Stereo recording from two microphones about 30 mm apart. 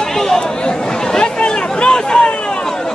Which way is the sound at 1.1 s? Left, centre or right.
Left.